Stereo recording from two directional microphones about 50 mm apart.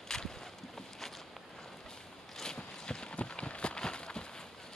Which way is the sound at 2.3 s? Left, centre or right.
Centre.